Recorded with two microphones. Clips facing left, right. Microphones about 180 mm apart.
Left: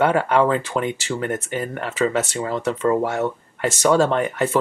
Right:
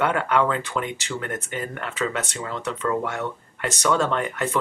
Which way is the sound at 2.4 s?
30° left (ahead or behind).